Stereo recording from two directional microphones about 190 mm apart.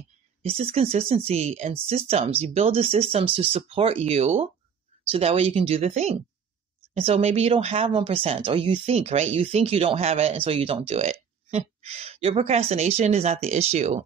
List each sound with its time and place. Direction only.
0.4 s speech: 30° right (ahead or behind)